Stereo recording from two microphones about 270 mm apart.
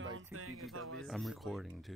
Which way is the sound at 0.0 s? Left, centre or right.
Right.